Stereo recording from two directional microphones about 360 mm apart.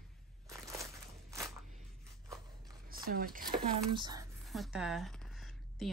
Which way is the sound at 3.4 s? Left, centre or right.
Centre.